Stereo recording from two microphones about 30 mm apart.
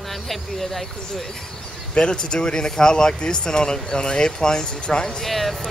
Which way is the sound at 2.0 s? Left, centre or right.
Left.